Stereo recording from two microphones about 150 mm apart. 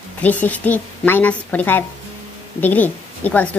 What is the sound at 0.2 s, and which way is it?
A woman's voice, 10° left (ahead or behind).